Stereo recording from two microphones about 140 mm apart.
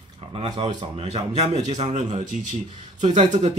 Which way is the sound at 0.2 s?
40° right (ahead or behind).